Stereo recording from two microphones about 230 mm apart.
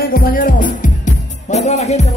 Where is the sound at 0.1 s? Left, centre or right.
Left.